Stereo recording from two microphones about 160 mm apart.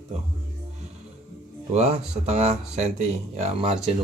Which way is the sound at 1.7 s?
45° right (ahead or behind).